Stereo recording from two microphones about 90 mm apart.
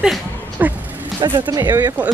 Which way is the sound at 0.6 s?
20° right (ahead or behind).